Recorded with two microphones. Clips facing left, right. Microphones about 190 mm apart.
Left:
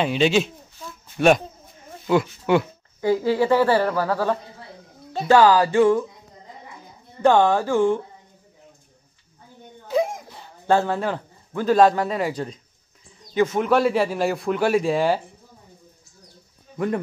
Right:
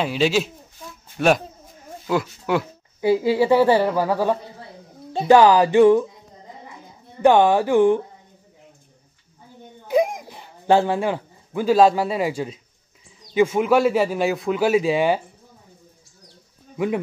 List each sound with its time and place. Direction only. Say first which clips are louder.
0.0 s speech: left 1 dB; 5° right (ahead or behind)
3.0 s speech: right 2 dB; 10° right (ahead or behind)
7.2 s speech: right 2 dB; 15° right (ahead or behind)
9.8 s a sound: right 3 dB; 15° right (ahead or behind)
13.3 s speech: right 2 dB; 10° right (ahead or behind)
16.7 s speech: right 1 dB; 5° right (ahead or behind)